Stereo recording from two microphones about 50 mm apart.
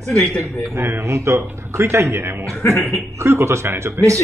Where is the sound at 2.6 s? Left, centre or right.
Left.